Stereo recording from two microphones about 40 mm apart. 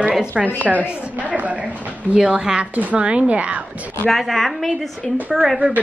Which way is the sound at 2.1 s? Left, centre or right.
Centre.